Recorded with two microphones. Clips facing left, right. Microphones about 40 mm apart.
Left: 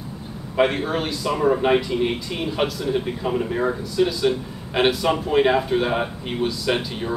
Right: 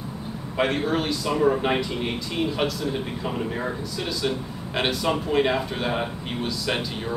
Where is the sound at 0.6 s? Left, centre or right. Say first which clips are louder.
Left 3 dB; centre.